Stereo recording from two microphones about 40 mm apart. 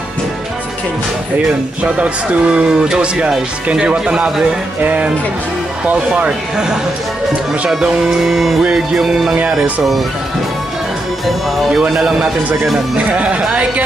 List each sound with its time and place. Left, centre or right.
1.8 s speech: right
4.8 s speech: right
6.5 s speech: centre
8.0 s music: centre
12.0 s speech: centre
12.9 s speech: right